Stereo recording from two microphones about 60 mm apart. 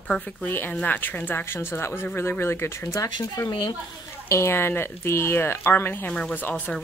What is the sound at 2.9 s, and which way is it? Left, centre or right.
Speech, left.